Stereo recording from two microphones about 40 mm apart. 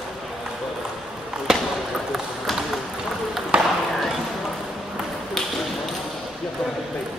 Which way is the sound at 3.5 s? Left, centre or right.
Right.